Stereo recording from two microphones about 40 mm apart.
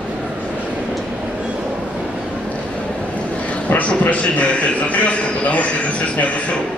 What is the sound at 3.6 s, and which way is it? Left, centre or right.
A man's voice, left.